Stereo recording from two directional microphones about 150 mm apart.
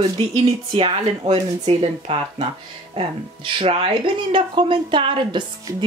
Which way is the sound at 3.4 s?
40° right (ahead or behind).